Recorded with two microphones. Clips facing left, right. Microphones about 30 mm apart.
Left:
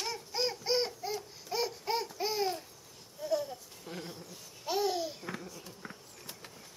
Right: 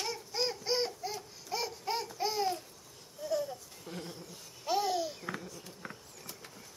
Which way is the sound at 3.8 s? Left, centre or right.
Centre.